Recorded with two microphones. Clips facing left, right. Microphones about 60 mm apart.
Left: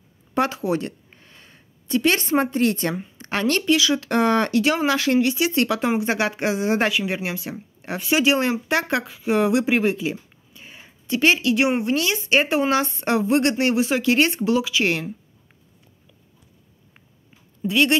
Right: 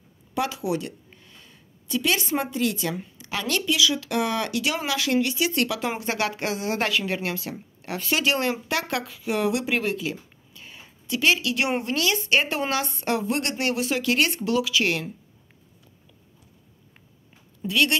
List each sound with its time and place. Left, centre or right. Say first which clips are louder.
0.3 s speech: left 4 dB; left
17.6 s speech: left 4 dB; left